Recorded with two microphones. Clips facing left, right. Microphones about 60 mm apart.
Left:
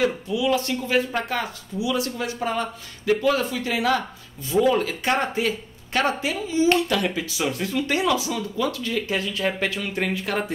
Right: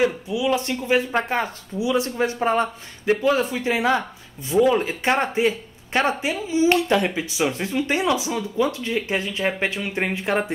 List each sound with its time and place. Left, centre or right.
0.0 s speech: centre